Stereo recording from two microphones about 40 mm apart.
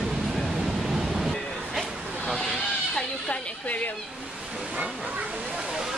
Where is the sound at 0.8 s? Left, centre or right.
Centre.